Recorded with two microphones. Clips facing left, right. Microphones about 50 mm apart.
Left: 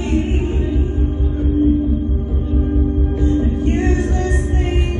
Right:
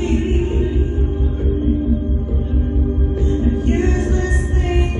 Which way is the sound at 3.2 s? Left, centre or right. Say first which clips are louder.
Left 5 dB; left.